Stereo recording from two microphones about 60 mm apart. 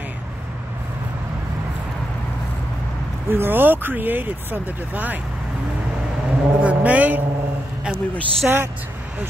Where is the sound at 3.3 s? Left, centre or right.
Right.